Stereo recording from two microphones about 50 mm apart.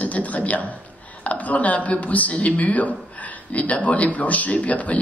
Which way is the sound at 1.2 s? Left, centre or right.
Left.